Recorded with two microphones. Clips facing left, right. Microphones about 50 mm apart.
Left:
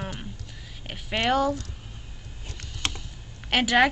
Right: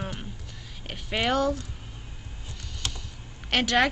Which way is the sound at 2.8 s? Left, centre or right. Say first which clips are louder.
Left 4 dB; left.